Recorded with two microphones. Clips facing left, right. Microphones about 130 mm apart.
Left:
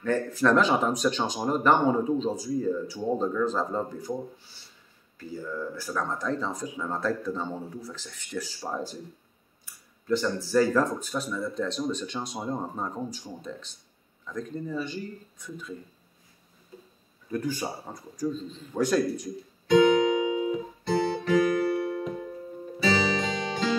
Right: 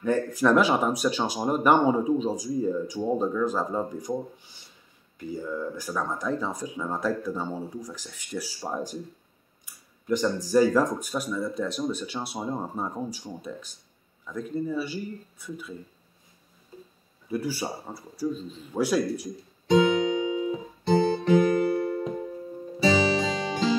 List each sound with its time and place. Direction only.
0.0 s speech: 10° right (ahead or behind)
9.7 s a sound: 15° right (ahead or behind)
10.0 s speech: 15° right (ahead or behind)
17.3 s speech: 10° right (ahead or behind)
20.8 s music: 25° right (ahead or behind)